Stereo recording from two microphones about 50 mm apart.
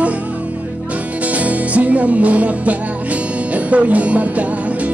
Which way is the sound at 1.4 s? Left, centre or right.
Right.